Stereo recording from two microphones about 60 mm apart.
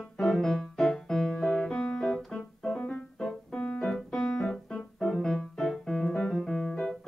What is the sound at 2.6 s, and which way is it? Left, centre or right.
Keyboard, centre.